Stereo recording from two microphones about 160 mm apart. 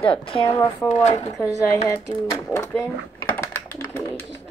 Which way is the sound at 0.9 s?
45° left (ahead or behind).